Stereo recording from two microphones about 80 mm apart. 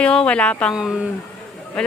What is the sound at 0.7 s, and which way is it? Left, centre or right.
Speech, centre.